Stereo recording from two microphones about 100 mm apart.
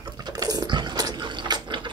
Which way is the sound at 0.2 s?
40° right (ahead or behind).